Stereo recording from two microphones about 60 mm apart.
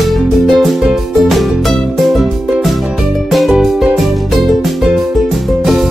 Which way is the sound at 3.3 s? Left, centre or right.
Centre.